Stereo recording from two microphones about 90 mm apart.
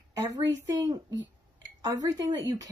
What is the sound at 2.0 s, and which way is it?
Speech, 40° right (ahead or behind).